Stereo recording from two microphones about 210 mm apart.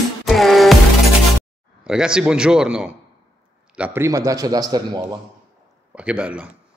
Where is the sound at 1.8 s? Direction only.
5° right (ahead or behind).